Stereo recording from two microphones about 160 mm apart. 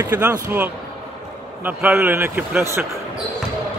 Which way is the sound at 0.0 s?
10° right (ahead or behind).